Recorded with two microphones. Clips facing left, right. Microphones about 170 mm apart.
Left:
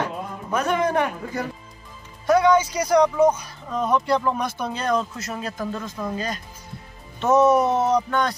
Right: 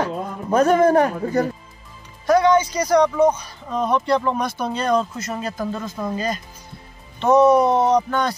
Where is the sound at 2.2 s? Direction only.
5° left (ahead or behind).